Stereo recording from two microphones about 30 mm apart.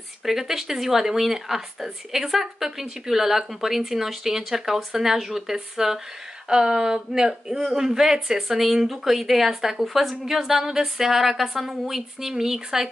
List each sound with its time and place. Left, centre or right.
0.2 s speech: centre